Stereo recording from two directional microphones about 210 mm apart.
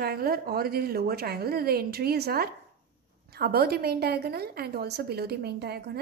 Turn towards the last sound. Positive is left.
turn(degrees=-50)  # may be behind; listen again after turning